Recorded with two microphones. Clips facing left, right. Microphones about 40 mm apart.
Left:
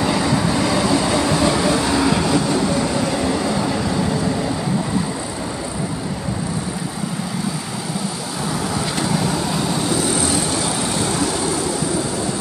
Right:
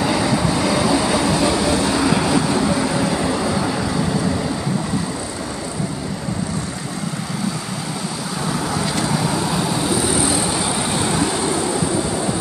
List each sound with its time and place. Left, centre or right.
0.0 s vehicle: centre